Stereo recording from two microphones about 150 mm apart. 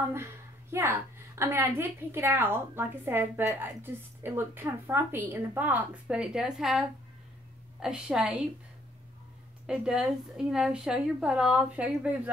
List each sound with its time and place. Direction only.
0.1 s a woman's voice: 15° right (ahead or behind)
9.7 s a woman's voice: 5° right (ahead or behind)